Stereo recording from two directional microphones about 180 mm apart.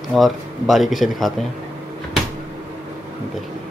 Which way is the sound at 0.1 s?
Centre (ahead or behind).